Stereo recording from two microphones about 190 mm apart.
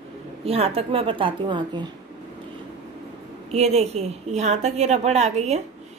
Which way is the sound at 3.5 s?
35° right (ahead or behind).